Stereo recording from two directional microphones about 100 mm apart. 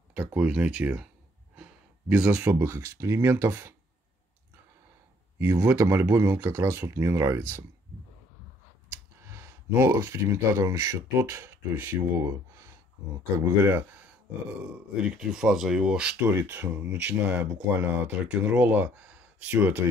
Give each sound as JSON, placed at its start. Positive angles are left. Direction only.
{"t": 0.1, "sound": "speech", "side_deg": -15}
{"t": 1.6, "sound": "gasp", "side_deg": -15}
{"t": 2.2, "sound": "speech", "side_deg": -20}
{"t": 5.4, "sound": "speech", "side_deg": -25}
{"t": 9.2, "sound": "speech", "side_deg": -25}
{"t": 13.7, "sound": "speech", "side_deg": -20}
{"t": 15.1, "sound": "speech", "side_deg": -5}